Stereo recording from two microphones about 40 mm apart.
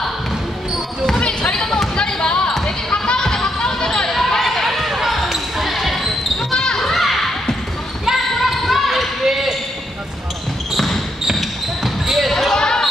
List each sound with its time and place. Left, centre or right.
1.2 s basketball bounce: left; by 6.0 s centre
6.5 s basketball bounce: centre
6.9 s a sound: centre
8.0 s basketball bounce: centre
11.3 s basketball bounce: centre
12.5 s basketball bounce: centre